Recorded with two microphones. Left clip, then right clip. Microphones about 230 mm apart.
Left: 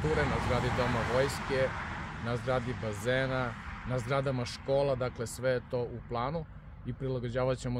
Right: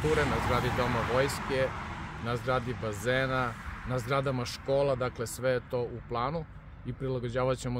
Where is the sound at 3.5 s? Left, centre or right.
Left.